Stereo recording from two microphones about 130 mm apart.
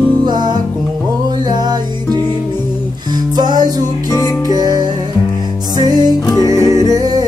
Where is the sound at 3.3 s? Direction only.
30° right (ahead or behind).